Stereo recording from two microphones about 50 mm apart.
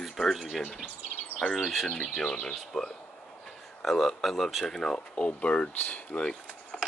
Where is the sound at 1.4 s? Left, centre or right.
Left.